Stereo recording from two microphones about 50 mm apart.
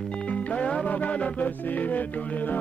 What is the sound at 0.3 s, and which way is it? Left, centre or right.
Music, left.